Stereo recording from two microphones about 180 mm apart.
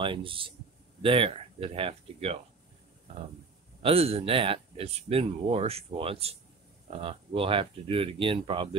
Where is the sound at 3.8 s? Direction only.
35° right (ahead or behind).